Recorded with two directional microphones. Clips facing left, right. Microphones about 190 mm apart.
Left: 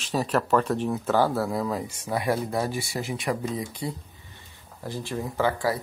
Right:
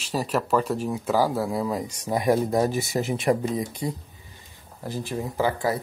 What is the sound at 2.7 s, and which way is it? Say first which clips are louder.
Speech: right 5 dB; 45° right (ahead or behind).